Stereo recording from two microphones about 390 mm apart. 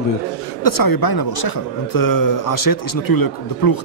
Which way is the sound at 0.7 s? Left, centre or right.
Left.